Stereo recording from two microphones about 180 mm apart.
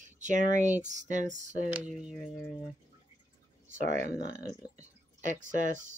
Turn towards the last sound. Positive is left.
turn(degrees=-45)  # may be behind; listen again after turning